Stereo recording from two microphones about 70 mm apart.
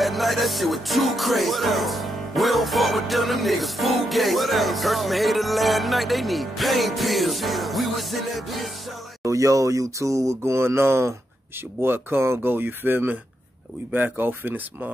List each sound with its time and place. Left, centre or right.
0.0 s music: centre
9.2 s mantra: right
11.8 s speech: right